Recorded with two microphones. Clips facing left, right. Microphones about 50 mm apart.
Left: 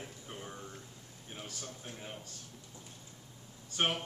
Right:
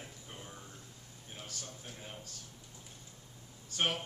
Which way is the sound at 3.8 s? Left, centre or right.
Centre.